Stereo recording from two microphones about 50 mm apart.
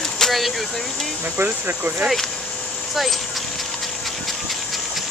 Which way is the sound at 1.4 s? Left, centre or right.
Right.